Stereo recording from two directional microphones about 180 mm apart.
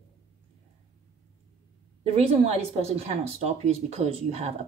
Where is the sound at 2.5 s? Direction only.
35° right (ahead or behind).